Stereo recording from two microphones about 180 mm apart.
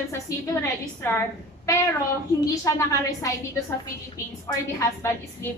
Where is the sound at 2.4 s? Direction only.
15° left (ahead or behind).